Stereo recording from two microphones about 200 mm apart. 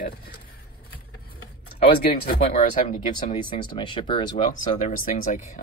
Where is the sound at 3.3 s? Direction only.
25° left (ahead or behind).